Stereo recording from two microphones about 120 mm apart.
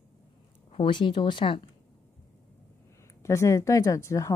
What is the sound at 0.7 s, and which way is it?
Speech, 45° left (ahead or behind).